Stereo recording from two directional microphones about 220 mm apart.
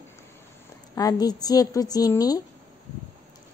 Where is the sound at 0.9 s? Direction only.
15° left (ahead or behind).